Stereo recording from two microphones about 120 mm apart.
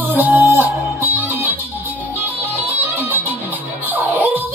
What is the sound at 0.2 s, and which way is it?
Music, 15° right (ahead or behind).